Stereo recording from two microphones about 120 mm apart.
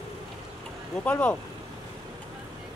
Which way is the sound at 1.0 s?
10° left (ahead or behind).